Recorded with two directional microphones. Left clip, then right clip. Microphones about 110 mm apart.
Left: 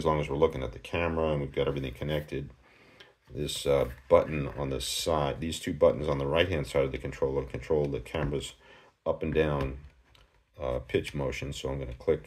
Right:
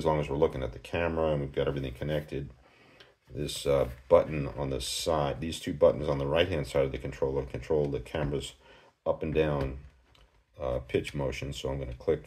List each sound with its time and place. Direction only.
0.0 s speech: 25° left (ahead or behind)